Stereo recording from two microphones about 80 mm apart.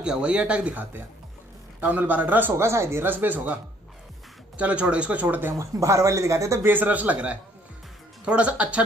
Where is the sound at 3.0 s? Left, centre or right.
Right.